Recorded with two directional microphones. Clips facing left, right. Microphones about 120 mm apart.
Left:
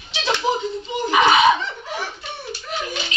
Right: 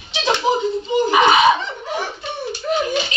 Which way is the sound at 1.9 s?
20° right (ahead or behind).